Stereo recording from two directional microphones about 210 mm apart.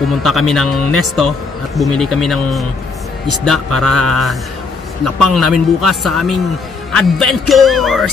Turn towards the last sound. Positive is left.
turn(degrees=0)  # may be behind; listen again after turning